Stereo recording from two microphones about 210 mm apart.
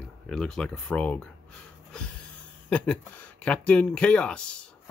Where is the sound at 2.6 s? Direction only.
5° left (ahead or behind).